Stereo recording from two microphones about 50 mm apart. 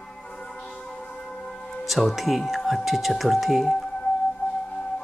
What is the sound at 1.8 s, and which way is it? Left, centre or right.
Speech, centre.